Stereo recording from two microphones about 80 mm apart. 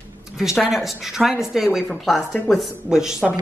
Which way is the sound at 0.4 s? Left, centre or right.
Centre.